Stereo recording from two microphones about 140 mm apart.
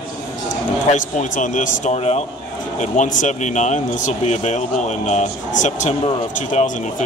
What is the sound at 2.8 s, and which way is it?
Speech, 60° left (ahead or behind).